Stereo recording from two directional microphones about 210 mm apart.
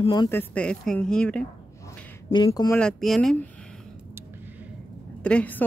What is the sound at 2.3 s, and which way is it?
Speech, 20° left (ahead or behind).